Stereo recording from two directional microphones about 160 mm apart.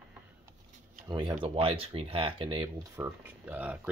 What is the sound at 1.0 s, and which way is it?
Speech, 25° right (ahead or behind).